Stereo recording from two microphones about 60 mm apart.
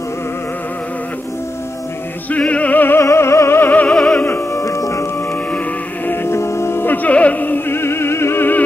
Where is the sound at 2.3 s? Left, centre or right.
Left.